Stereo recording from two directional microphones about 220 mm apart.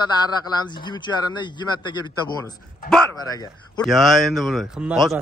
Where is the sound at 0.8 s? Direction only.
20° left (ahead or behind).